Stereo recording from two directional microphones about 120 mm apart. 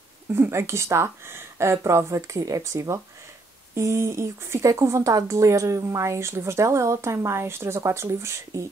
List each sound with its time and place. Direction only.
0.3 s speech: 20° right (ahead or behind)